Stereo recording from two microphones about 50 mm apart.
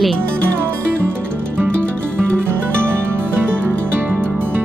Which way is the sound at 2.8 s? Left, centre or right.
Right.